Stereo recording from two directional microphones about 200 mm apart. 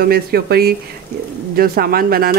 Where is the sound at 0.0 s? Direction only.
50° right (ahead or behind).